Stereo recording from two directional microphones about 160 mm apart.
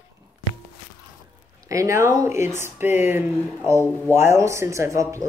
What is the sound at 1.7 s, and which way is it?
Speech, 20° right (ahead or behind).